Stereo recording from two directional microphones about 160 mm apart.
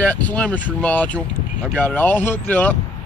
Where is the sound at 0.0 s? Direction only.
10° left (ahead or behind).